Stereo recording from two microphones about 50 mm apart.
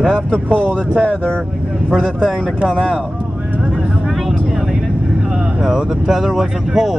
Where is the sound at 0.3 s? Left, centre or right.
Right.